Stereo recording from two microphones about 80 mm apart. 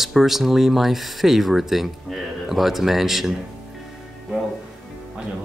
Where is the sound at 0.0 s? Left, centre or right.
Centre.